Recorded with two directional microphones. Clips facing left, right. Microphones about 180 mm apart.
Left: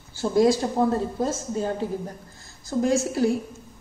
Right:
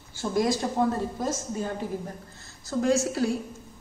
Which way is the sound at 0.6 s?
20° left (ahead or behind).